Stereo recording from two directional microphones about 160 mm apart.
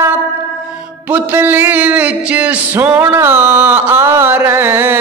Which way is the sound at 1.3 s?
15° right (ahead or behind).